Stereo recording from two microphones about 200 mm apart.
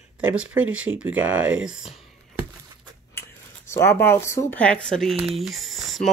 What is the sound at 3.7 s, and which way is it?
Speech, 15° left (ahead or behind).